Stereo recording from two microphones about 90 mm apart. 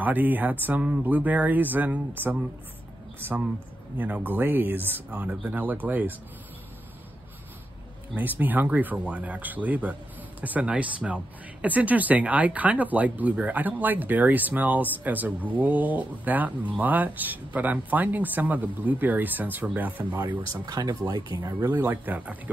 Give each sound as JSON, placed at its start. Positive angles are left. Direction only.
{"t": 0.0, "sound": "speech", "side_deg": -20}
{"t": 4.0, "sound": "speech", "side_deg": -20}
{"t": 8.2, "sound": "speech", "side_deg": -20}
{"t": 20.6, "sound": "speech", "side_deg": -45}
{"t": 21.6, "sound": "speech", "side_deg": -20}